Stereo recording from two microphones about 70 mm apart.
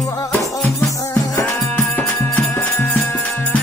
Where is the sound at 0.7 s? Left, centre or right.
Left.